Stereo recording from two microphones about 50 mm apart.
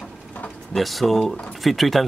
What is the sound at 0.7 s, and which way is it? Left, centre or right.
Speech, centre.